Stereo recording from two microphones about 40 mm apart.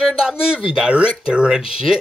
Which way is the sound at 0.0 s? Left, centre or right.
Right.